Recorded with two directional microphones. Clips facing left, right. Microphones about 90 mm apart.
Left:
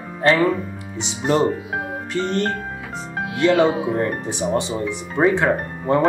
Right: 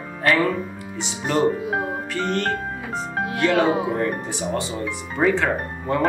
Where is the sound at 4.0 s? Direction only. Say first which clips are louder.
Left 2 dB; 20° left (ahead or behind).